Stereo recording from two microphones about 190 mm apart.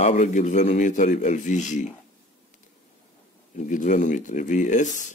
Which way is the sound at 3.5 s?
40° left (ahead or behind).